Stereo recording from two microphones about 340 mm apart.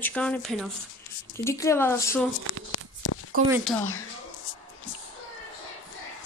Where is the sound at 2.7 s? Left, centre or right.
Left.